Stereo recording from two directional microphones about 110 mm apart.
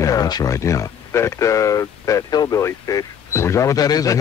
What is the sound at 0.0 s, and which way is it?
Speech, 35° left (ahead or behind).